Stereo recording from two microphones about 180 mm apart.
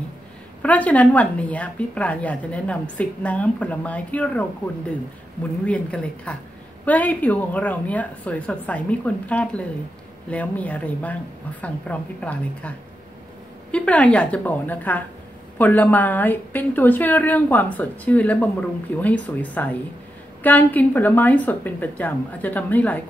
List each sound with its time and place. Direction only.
0.6 s a woman's voice: 10° left (ahead or behind)
5.7 s a woman's voice: 5° left (ahead or behind)